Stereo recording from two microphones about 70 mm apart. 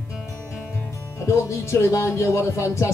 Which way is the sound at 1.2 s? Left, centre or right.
Left.